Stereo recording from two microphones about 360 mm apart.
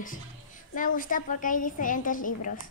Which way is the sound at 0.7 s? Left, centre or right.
Left.